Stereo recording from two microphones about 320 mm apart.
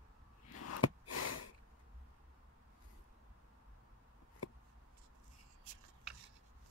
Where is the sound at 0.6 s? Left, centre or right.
Left.